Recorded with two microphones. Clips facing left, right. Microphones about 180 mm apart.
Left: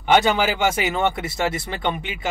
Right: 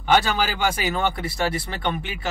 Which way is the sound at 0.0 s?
20° left (ahead or behind).